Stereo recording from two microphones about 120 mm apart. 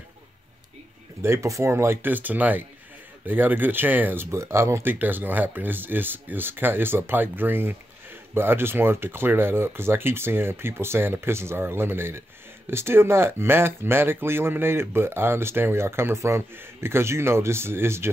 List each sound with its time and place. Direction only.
1.2 s speech: 25° right (ahead or behind)